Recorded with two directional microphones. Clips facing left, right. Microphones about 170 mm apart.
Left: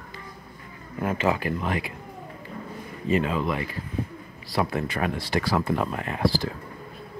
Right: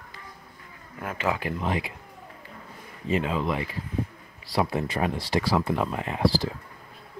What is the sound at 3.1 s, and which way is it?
Speech, 20° right (ahead or behind).